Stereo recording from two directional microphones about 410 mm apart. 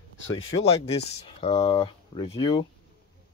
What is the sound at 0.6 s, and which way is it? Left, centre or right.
Speech, centre.